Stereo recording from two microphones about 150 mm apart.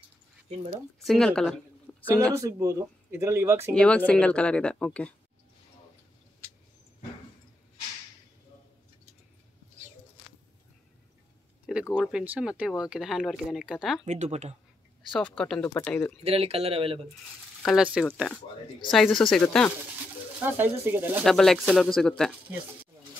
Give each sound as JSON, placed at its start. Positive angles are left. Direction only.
{"t": 1.0, "sound": "speech", "side_deg": 5}
{"t": 1.9, "sound": "a sound", "side_deg": 10}
{"t": 2.3, "sound": "speech", "side_deg": -20}
{"t": 3.7, "sound": "speech", "side_deg": 10}
{"t": 11.9, "sound": "speech", "side_deg": -5}
{"t": 14.0, "sound": "speech", "side_deg": -50}
{"t": 15.1, "sound": "speech", "side_deg": 5}
{"t": 16.3, "sound": "speech", "side_deg": -40}
{"t": 17.6, "sound": "speech", "side_deg": -5}
{"t": 19.0, "sound": "speech", "side_deg": 5}
{"t": 20.4, "sound": "speech", "side_deg": -15}
{"t": 21.2, "sound": "speech", "side_deg": 5}